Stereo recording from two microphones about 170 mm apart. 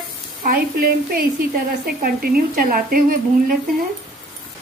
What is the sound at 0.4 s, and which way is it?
A woman's voice, 60° right (ahead or behind).